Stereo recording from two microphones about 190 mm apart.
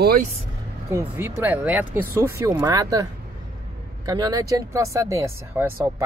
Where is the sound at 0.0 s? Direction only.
50° right (ahead or behind).